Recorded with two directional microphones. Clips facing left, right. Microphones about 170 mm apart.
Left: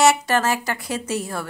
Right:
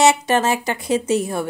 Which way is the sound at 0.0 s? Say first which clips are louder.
Right 2 dB; 20° right (ahead or behind).